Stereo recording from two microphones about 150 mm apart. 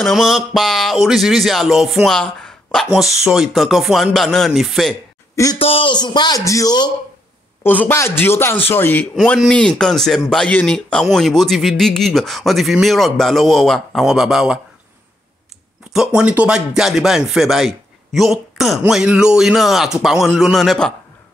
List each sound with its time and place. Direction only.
0.0 s speech: centre (ahead or behind)
5.3 s a man's voice: 20° left (ahead or behind)
5.6 s a man's voice: 35° left (ahead or behind)
7.6 s speech: 10° left (ahead or behind)
9.1 s speech: centre (ahead or behind)
15.9 s speech: 5° right (ahead or behind)